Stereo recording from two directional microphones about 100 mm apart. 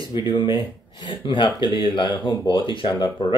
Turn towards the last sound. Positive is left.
turn(degrees=45)  # may be behind; listen again after turning